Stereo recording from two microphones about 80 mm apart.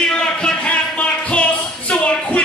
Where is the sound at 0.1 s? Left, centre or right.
Centre.